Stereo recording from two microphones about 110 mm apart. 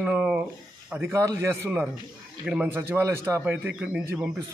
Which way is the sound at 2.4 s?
10° right (ahead or behind).